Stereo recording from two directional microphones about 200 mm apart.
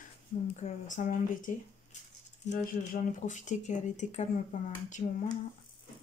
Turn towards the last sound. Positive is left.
turn(degrees=40)  # may be behind; listen again after turning